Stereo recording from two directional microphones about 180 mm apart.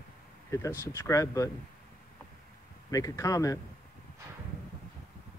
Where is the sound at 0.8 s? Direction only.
20° left (ahead or behind).